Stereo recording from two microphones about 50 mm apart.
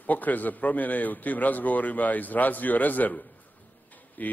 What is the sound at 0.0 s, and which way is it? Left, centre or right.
A man's voice, left.